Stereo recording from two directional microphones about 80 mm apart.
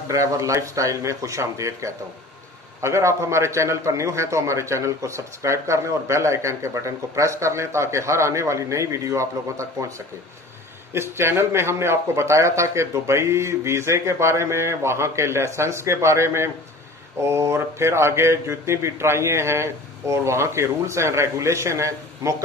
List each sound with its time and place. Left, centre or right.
0.1 s a man's voice: right
10.9 s a man's voice: right